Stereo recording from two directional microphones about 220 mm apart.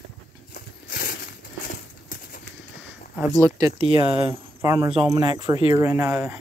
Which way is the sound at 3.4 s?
15° right (ahead or behind).